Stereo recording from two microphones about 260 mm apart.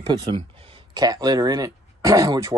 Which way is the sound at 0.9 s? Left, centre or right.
Centre.